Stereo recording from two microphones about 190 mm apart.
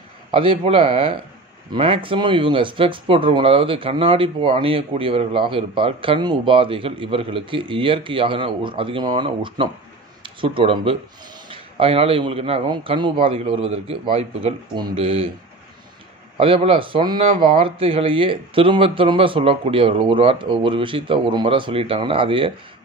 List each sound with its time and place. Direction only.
0.3 s speech: 30° right (ahead or behind)
16.3 s speech: 30° right (ahead or behind)